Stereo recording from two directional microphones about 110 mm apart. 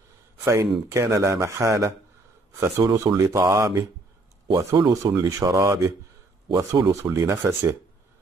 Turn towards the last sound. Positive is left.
turn(degrees=-20)  # may be behind; listen again after turning